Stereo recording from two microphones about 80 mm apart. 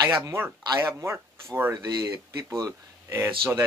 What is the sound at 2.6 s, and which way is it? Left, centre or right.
Speech, right.